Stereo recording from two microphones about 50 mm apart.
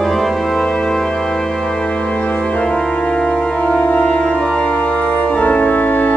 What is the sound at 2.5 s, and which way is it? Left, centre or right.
Organ, centre.